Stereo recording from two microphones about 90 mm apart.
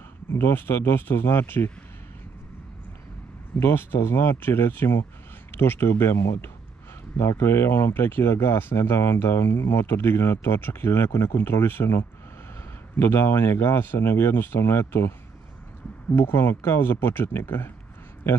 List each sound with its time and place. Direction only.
0.3 s speech: 25° left (ahead or behind)
3.5 s speech: 25° left (ahead or behind)
16.2 s speech: 25° left (ahead or behind)